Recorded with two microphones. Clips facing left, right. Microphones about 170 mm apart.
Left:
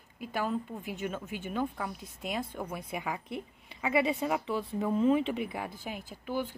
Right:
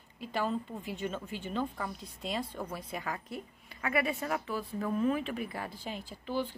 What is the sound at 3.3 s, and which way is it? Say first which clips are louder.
A woman's voice: left 3 dB; 20° left (ahead or behind).